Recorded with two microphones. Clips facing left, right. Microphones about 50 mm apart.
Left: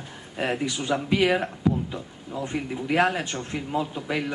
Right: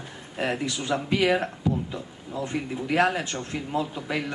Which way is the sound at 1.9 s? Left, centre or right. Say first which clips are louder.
Even; centre.